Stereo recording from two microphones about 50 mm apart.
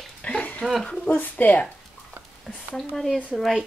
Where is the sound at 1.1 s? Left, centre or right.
Left.